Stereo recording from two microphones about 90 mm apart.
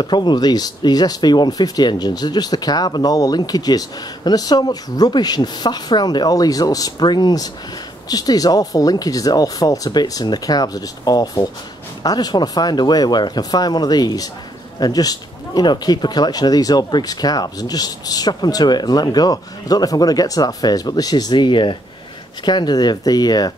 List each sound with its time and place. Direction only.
0.0 s speech: 55° left (ahead or behind)